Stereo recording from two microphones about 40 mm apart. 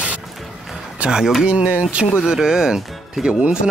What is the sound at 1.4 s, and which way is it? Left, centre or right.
Speech, right.